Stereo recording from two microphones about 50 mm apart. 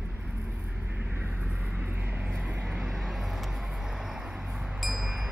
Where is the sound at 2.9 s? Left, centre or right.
Centre.